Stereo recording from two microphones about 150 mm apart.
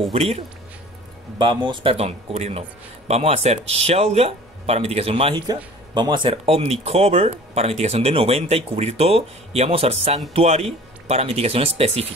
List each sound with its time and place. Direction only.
0.1 s speech: 45° right (ahead or behind)
1.4 s speech: 30° right (ahead or behind)